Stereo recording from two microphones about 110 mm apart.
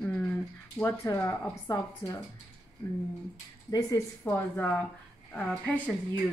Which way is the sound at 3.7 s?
35° left (ahead or behind).